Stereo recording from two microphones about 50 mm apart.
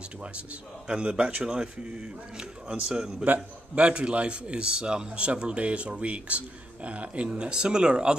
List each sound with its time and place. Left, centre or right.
0.8 s a man's voice: centre